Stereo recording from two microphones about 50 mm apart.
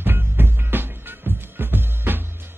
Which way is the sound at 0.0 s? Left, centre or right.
Right.